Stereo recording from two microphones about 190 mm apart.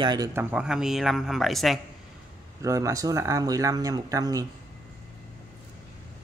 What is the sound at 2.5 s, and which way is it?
Speech, 15° right (ahead or behind).